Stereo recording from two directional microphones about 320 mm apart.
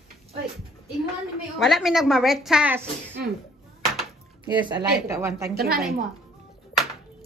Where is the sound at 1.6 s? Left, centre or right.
Centre.